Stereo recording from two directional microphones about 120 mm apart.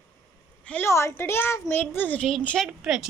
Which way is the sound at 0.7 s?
20° left (ahead or behind).